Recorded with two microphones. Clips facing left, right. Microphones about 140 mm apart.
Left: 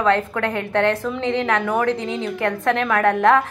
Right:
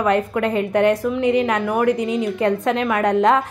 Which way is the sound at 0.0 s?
15° right (ahead or behind).